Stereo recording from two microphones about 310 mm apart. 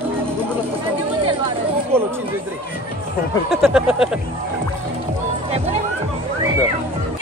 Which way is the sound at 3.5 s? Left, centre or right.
Centre.